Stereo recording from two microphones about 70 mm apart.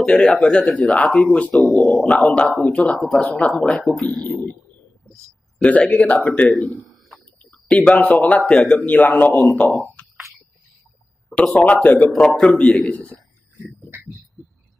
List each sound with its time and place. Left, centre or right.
0.0 s a man's voice: centre
1.0 s a man's voice: centre
1.9 s a man's voice: left
3.7 s speech: centre
5.6 s a man's voice: centre
9.8 s a sound: left
11.2 s a man's voice: centre
12.1 s a man's voice: centre